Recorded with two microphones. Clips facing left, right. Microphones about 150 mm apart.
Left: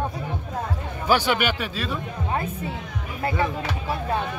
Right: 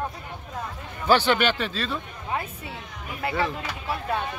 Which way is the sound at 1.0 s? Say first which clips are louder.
Right 1 dB; 10° left (ahead or behind).